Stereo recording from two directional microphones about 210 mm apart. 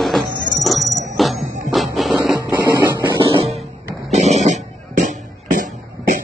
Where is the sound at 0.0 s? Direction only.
Centre (ahead or behind).